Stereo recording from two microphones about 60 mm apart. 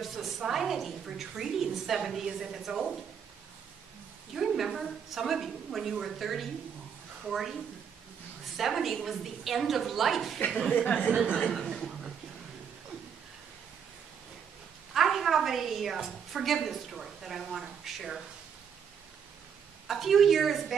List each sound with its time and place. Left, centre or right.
0.0 s a woman's voice: centre
4.4 s a woman's voice: centre
8.5 s a woman's voice: centre
11.1 s speech: centre
11.5 s a woman's voice: centre
15.0 s a woman's voice: centre
19.9 s a woman's voice: centre